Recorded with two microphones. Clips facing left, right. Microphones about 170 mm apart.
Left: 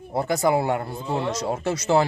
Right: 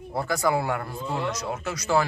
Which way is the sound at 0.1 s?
20° left (ahead or behind).